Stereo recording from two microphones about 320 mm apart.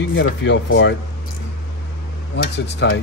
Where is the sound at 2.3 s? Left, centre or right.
Left.